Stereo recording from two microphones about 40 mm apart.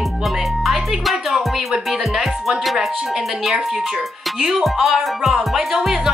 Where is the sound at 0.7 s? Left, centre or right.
Centre.